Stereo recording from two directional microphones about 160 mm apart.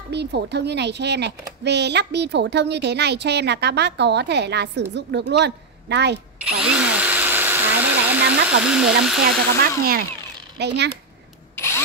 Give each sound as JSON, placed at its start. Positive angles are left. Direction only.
{"t": 0.1, "sound": "a child's voice", "side_deg": -90}
{"t": 6.6, "sound": "a sound", "side_deg": -5}
{"t": 9.6, "sound": "speech", "side_deg": -70}
{"t": 10.6, "sound": "a child's voice", "side_deg": -90}